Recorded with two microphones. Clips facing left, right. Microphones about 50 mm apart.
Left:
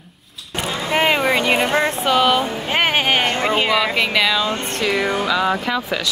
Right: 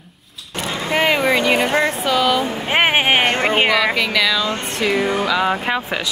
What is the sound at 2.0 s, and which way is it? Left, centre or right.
Speech, left.